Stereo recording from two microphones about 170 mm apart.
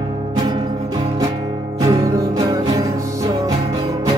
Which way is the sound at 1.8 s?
20° right (ahead or behind).